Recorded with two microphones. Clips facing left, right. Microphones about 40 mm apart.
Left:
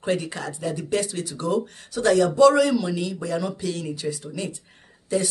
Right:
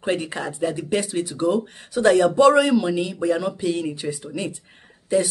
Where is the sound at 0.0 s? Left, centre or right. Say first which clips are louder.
Right 1 dB; right.